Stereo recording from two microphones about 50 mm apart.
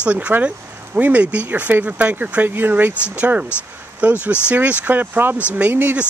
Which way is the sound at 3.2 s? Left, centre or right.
Right.